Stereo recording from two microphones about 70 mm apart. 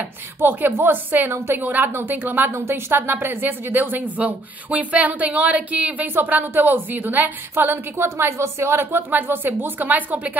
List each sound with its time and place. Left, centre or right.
0.4 s a woman's voice: right